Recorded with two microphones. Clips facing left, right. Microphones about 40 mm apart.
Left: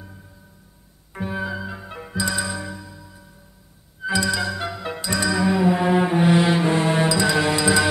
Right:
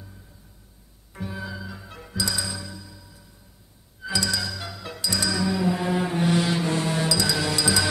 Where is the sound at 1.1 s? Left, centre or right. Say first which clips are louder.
Left 7 dB; left.